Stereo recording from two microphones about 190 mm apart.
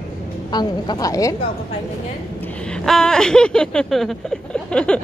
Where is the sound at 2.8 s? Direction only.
5° left (ahead or behind).